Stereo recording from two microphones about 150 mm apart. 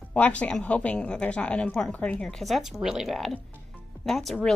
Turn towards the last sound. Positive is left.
turn(degrees=0)  # may be behind; listen again after turning